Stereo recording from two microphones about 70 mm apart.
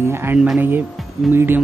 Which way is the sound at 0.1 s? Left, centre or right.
Right.